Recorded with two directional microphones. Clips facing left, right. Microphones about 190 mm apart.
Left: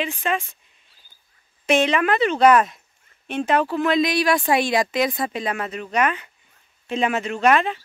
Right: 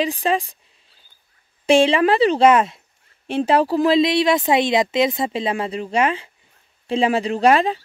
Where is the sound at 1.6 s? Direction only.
30° right (ahead or behind).